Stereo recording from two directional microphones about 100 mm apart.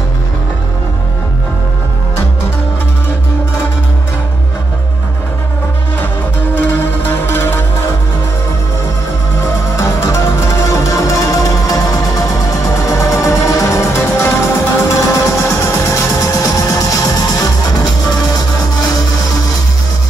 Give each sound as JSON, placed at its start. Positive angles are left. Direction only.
{"t": 6.5, "sound": "music", "side_deg": 20}
{"t": 9.4, "sound": "music", "side_deg": 30}